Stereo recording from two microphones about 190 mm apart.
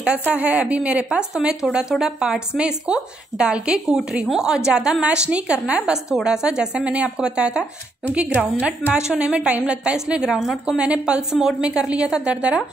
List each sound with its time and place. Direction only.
0.3 s a woman's voice: 5° right (ahead or behind)